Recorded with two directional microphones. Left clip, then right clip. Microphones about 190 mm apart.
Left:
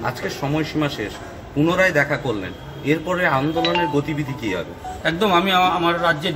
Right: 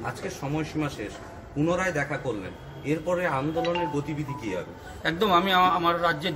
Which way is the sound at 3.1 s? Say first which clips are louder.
Left 6 dB; 35° left (ahead or behind).